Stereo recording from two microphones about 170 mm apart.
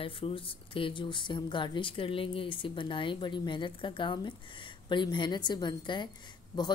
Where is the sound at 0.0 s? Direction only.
30° left (ahead or behind).